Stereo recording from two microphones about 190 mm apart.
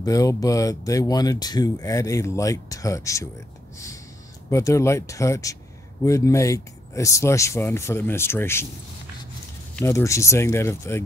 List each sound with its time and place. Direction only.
0.0 s speech: 15° left (ahead or behind)
3.7 s a sound: 15° left (ahead or behind)
4.5 s speech: 15° left (ahead or behind)
9.8 s speech: 15° left (ahead or behind)